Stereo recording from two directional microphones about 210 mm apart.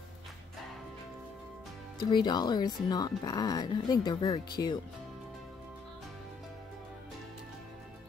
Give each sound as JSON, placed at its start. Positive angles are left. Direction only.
{"t": 2.0, "sound": "speech", "side_deg": 20}